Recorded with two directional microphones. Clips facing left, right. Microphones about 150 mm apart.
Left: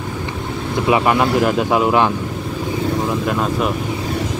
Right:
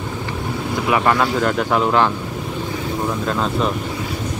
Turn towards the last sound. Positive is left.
turn(degrees=10)  # may be behind; listen again after turning